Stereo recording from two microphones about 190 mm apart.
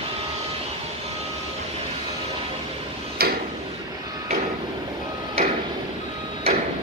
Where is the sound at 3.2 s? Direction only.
55° right (ahead or behind).